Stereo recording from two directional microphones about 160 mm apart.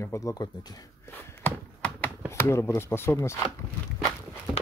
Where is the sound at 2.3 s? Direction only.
15° left (ahead or behind).